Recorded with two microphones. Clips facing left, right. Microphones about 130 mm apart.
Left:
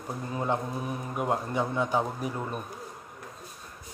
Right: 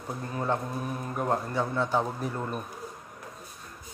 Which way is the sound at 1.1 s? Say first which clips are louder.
Even; 10° left (ahead or behind).